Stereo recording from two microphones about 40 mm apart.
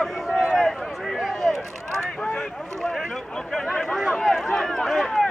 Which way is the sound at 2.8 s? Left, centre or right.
Centre.